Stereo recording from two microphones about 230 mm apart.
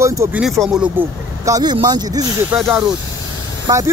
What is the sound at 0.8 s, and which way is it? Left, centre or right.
Speech, centre.